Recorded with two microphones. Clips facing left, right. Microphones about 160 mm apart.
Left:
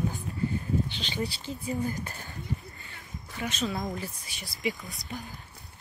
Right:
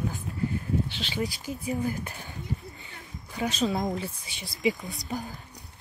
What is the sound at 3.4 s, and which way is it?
Speech, 30° right (ahead or behind).